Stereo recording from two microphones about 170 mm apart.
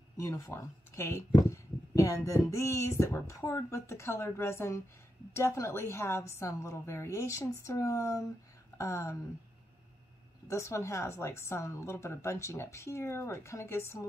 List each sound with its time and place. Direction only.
0.2 s speech: 15° left (ahead or behind)
10.5 s speech: 15° left (ahead or behind)